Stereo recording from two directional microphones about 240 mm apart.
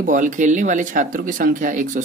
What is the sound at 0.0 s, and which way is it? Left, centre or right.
A woman's voice, right.